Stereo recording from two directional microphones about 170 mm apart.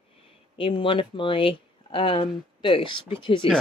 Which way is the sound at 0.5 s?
30° left (ahead or behind).